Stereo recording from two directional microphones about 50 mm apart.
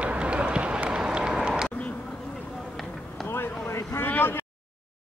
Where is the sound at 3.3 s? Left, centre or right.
Left.